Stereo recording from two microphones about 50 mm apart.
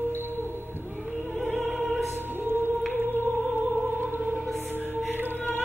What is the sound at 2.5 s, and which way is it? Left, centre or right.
Music, right.